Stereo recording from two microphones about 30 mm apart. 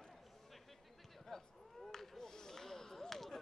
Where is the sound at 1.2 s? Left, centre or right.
Centre.